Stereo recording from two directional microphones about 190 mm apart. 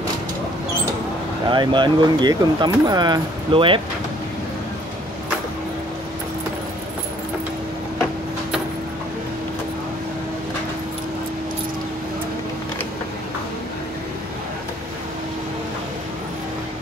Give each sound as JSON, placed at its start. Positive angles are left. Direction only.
{"t": 1.5, "sound": "speech", "side_deg": -25}